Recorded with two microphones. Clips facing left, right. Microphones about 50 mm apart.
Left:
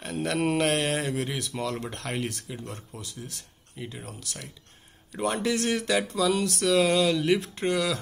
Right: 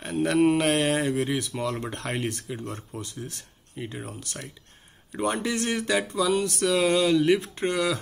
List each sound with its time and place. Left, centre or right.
0.0 s speech: centre
5.1 s speech: centre